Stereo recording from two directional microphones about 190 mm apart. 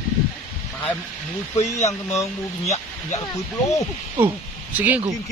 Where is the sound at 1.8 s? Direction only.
15° left (ahead or behind).